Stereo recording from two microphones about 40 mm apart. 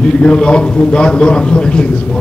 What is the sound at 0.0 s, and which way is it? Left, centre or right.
A man's voice, left.